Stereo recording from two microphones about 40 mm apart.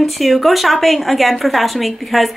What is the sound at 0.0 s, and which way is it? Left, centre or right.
A woman's voice, centre.